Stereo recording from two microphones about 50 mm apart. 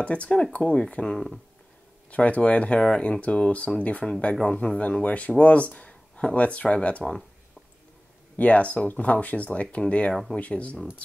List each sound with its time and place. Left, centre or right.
0.0 s speech: left
8.4 s speech: left